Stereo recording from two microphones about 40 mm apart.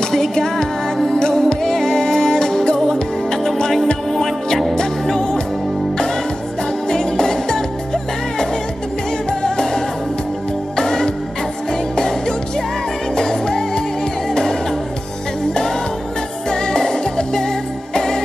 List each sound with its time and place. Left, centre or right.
0.1 s music: centre
3.7 s music: centre
6.9 s music: centre
13.1 s music: centre
16.4 s music: centre